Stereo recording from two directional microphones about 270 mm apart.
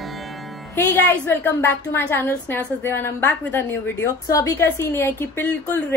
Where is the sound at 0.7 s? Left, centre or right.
Centre.